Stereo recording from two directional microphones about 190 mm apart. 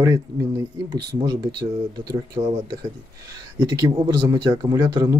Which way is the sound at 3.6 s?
15° right (ahead or behind).